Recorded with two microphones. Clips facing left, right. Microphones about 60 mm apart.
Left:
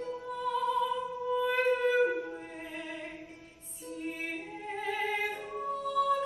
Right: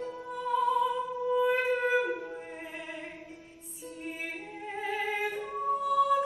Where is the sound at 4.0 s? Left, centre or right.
Centre.